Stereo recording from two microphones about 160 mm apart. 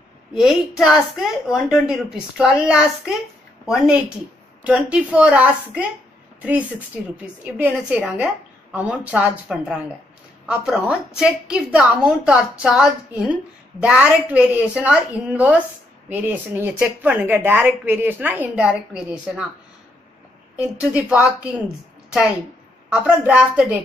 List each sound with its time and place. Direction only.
0.3 s a woman's voice: centre (ahead or behind)
7.0 s a woman's voice: 5° right (ahead or behind)
20.5 s a woman's voice: 10° right (ahead or behind)
22.9 s a woman's voice: 5° right (ahead or behind)